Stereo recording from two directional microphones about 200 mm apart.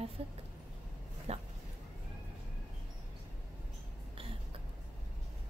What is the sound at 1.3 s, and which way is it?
Dog, 30° right (ahead or behind).